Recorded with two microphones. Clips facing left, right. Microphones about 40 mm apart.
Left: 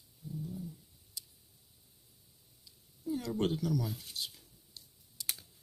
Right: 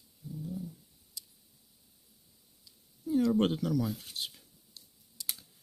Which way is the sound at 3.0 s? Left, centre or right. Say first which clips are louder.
Right 6 dB; right.